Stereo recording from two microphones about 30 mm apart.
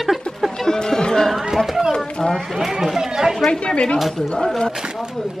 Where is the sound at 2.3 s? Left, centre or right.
Centre.